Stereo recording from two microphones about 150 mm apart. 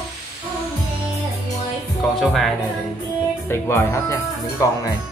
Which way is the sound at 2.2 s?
Centre (ahead or behind).